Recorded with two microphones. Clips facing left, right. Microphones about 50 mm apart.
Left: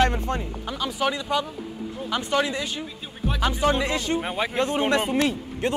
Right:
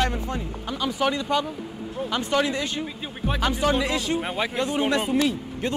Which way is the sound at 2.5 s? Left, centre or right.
Centre.